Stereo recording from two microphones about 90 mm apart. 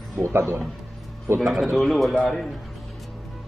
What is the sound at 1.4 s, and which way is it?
A man's voice, centre (ahead or behind).